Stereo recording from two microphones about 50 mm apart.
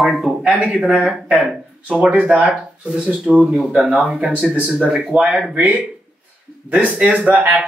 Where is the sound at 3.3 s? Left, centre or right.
Centre; by 5.8 s right.